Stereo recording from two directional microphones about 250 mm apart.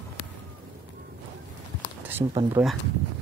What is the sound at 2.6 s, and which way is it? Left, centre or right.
Speech, centre.